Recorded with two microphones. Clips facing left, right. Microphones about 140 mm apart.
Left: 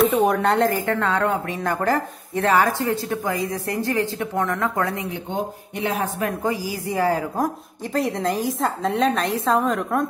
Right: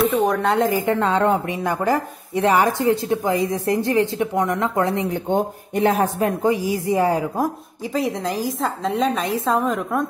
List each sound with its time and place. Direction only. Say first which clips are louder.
0.0 s a woman's voice: left 1 dB; centre (ahead or behind)
0.7 s speech: right 3 dB; 15° right (ahead or behind)
1.6 s speech: right 1 dB; 15° right (ahead or behind)
5.1 s speech: right 6 dB; 45° right (ahead or behind)
6.2 s speech: right 5 dB; 20° right (ahead or behind)
7.9 s a woman's voice: even; centre (ahead or behind)